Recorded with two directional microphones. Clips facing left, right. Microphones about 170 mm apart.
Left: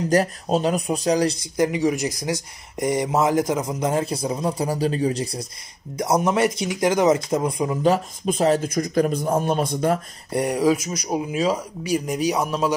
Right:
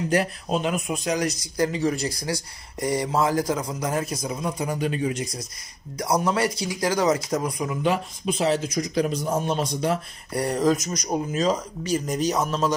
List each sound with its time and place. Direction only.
0.1 s speech: 40° left (ahead or behind)
5.9 s speech: 25° left (ahead or behind); by 9.9 s 50° left (ahead or behind)
10.3 s speech: 15° left (ahead or behind)